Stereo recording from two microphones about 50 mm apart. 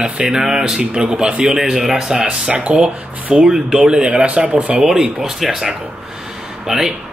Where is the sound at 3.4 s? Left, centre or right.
Centre.